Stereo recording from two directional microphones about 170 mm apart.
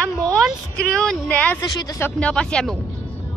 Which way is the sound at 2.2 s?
5° left (ahead or behind).